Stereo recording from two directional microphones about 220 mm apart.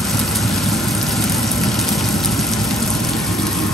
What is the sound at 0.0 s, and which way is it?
Vehicle, centre (ahead or behind).